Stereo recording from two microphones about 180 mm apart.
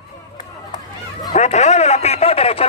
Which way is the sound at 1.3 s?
40° left (ahead or behind).